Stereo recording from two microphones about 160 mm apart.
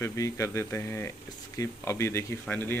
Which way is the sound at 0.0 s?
20° left (ahead or behind).